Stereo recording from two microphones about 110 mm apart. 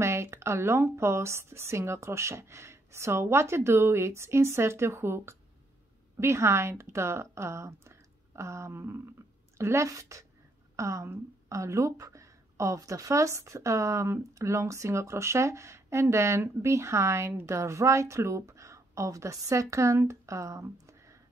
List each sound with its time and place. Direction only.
0.0 s a woman's voice: 25° right (ahead or behind)